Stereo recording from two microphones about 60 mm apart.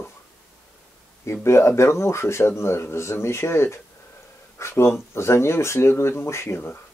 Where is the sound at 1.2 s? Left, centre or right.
Left.